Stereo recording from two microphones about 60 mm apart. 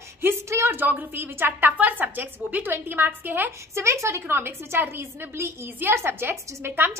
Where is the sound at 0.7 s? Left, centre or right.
Right.